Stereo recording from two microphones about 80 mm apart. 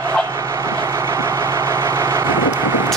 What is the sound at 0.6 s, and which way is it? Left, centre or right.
Vehicle, right.